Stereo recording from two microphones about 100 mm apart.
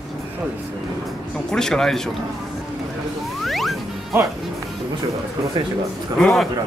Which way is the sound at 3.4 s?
Centre (ahead or behind).